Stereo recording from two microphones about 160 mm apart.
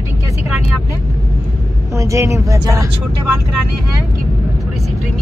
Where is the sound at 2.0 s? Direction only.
20° right (ahead or behind).